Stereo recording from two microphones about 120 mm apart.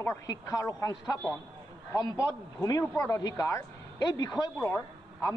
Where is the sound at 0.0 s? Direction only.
25° left (ahead or behind).